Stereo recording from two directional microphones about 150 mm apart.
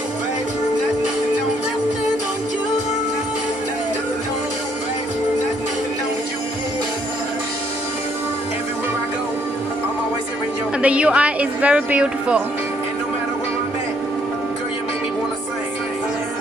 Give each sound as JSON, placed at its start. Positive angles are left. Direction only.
{"t": 10.8, "sound": "speech", "side_deg": -10}